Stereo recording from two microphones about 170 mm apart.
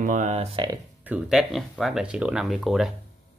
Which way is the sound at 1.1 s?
Centre (ahead or behind).